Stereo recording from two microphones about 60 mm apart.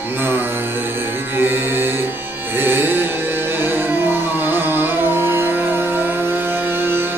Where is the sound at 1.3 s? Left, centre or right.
Right.